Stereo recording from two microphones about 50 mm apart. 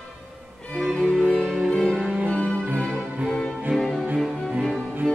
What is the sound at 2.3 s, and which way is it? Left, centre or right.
Music, centre.